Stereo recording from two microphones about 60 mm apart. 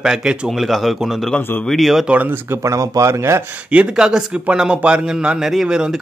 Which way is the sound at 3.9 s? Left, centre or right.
Centre.